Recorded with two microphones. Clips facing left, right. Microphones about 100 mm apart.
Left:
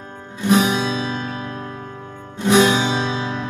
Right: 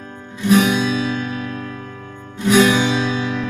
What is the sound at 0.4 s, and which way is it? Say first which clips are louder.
Music: right 2 dB; 30° left (ahead or behind).